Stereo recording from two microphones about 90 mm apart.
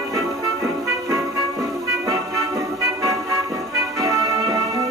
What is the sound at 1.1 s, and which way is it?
Music, 40° right (ahead or behind).